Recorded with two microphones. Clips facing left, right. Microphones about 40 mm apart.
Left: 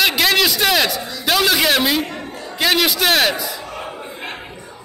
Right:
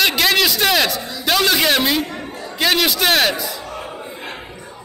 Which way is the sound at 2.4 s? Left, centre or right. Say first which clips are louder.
Even; centre.